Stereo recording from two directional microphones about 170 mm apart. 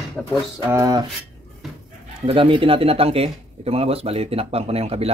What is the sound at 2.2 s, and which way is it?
Speech, 30° right (ahead or behind).